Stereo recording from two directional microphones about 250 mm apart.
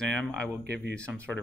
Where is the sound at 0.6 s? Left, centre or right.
Right.